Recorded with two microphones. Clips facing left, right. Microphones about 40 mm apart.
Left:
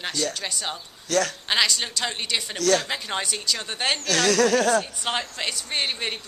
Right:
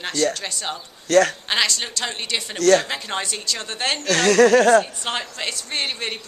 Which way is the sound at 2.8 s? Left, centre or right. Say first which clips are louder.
Right 1 dB; centre.